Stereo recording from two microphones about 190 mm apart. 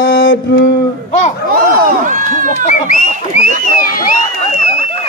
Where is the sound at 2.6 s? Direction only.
40° left (ahead or behind).